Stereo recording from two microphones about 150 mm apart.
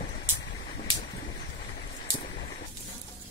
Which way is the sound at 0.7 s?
55° left (ahead or behind).